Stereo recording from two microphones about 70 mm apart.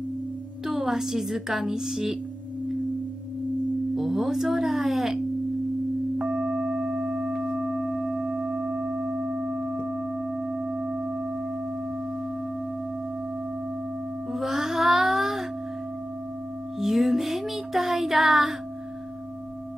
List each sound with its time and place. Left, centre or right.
0.7 s a woman's voice: centre
3.9 s speech: centre
6.1 s tuning fork: centre
10.6 s sine wave: centre
14.3 s music: centre
16.8 s music: centre